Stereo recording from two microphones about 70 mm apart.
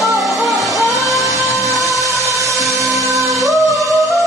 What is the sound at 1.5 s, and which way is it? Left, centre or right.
Music, left.